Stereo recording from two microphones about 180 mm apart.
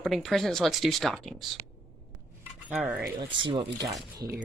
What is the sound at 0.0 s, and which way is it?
Speech, centre (ahead or behind).